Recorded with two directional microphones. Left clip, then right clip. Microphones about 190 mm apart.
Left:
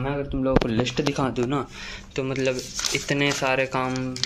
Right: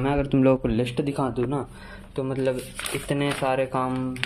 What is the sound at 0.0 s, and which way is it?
Speech, 50° right (ahead or behind).